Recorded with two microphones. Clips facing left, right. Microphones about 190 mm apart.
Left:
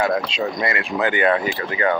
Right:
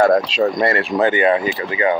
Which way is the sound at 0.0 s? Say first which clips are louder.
Right 7 dB; 45° right (ahead or behind).